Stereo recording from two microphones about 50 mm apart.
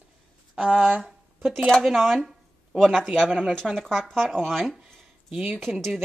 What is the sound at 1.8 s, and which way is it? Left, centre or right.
A woman's voice, centre.